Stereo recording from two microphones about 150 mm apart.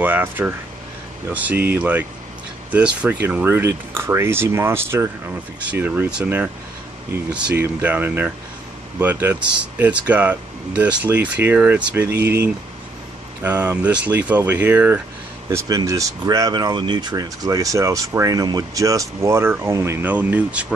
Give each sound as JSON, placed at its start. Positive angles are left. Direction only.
{"t": 0.0, "sound": "speech", "side_deg": -10}
{"t": 7.5, "sound": "speech", "side_deg": -10}
{"t": 13.4, "sound": "speech", "side_deg": -10}
{"t": 15.5, "sound": "speech", "side_deg": -20}